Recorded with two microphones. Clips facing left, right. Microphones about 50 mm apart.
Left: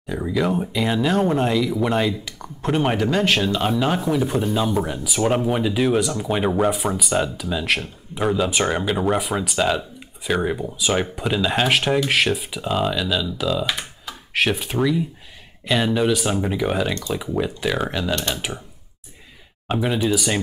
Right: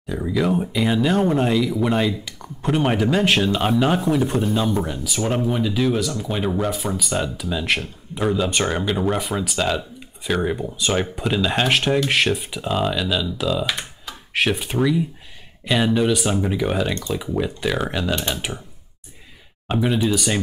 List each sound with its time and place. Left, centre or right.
0.0 s speech: centre
19.7 s speech: centre